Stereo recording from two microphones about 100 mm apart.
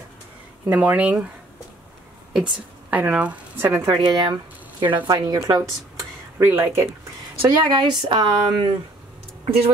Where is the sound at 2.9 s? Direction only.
15° right (ahead or behind).